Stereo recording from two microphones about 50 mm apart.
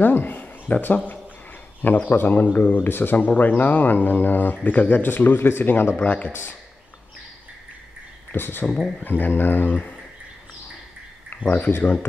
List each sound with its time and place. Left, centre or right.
0.0 s speech: left
6.0 s speech: left
8.3 s speech: left
8.6 s speech: centre
9.2 s speech: left
11.4 s speech: left